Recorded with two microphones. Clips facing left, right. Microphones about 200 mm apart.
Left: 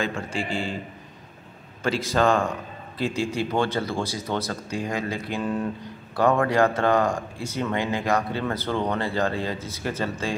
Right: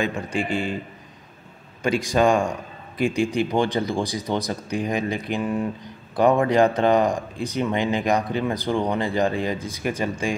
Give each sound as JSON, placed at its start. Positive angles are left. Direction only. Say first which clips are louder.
{"t": 0.0, "sound": "speech", "louder": "right 3 dB", "side_deg": -20}
{"t": 1.8, "sound": "speech", "louder": "right 3 dB", "side_deg": -15}